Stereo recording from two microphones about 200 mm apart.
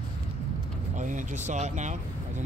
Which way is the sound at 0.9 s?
40° right (ahead or behind).